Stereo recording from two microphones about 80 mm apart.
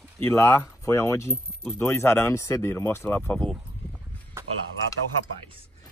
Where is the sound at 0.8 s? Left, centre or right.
Left.